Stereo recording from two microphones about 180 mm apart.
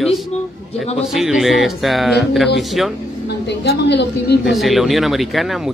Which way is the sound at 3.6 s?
70° left (ahead or behind).